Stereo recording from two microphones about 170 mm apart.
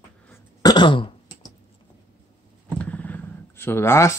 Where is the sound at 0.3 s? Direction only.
25° left (ahead or behind).